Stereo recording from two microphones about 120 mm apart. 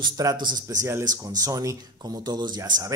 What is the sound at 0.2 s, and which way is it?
Speech, 35° right (ahead or behind).